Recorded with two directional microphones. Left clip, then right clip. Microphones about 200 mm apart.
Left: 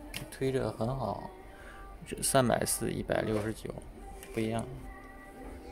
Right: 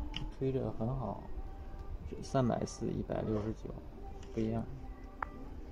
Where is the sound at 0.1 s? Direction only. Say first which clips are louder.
Left 4 dB; 30° left (ahead or behind).